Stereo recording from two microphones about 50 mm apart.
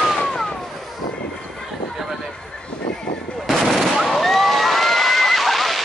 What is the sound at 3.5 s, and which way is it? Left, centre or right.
Fireworks, centre.